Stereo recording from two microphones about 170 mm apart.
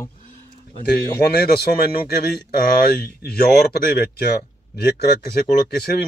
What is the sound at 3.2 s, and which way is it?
Speech, 70° left (ahead or behind).